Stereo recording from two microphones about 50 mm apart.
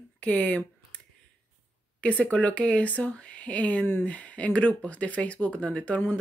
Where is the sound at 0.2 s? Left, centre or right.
Left.